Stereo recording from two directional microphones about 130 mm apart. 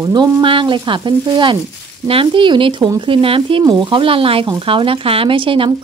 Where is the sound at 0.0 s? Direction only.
35° right (ahead or behind).